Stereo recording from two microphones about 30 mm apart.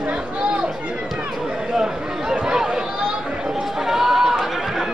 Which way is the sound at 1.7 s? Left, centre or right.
Right.